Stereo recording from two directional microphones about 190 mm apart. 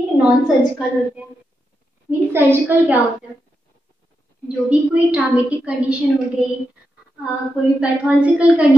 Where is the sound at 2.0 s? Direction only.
10° right (ahead or behind).